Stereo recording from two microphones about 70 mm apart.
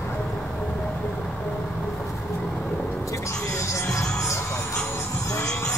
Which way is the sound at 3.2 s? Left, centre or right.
Left.